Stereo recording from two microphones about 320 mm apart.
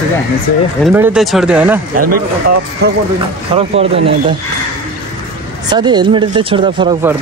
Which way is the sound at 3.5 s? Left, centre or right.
Centre.